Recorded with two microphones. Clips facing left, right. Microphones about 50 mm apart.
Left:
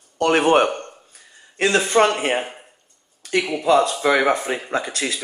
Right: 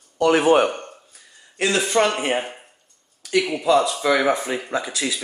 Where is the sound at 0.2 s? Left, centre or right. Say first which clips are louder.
Even; left.